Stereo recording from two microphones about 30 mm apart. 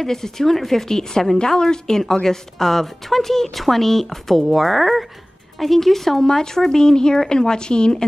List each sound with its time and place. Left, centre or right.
0.0 s a woman's voice: centre